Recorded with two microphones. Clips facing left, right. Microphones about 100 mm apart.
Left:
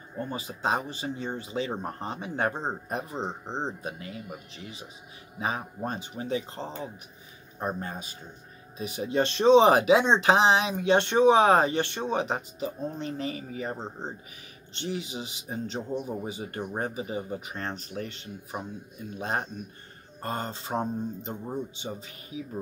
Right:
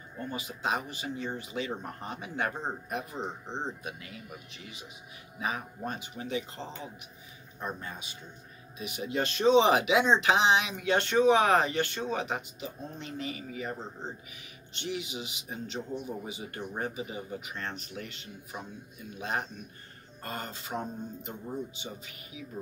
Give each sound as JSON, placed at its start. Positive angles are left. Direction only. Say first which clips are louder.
{"t": 0.2, "sound": "speech", "louder": "left 4 dB", "side_deg": 35}
{"t": 5.4, "sound": "speech", "louder": "left 3 dB", "side_deg": 30}